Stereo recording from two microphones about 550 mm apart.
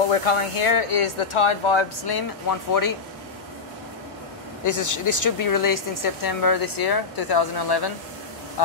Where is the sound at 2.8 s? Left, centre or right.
Left.